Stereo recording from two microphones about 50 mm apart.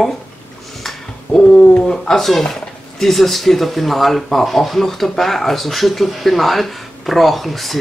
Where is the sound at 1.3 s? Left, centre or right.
Left.